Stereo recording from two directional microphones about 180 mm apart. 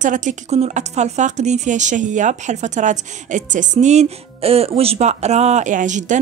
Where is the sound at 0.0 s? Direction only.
45° right (ahead or behind).